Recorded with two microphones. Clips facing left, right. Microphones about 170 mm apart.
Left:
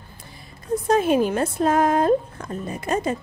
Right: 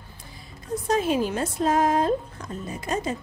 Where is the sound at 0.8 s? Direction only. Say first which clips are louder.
Left 4 dB; 55° left (ahead or behind).